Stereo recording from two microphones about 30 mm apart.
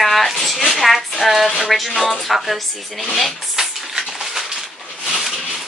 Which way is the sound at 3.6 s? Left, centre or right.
Centre.